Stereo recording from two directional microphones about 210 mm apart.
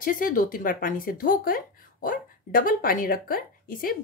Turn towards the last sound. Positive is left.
turn(degrees=45)  # may be behind; listen again after turning